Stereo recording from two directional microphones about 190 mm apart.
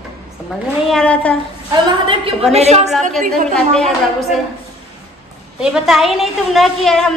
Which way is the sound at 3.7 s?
Centre (ahead or behind).